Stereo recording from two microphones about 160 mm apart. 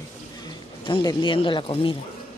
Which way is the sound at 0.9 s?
30° left (ahead or behind).